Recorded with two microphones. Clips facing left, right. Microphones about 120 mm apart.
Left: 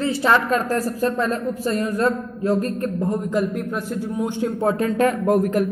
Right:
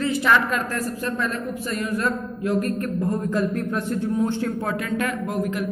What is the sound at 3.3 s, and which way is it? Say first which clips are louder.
A man's voice: left 1 dB; 15° left (ahead or behind).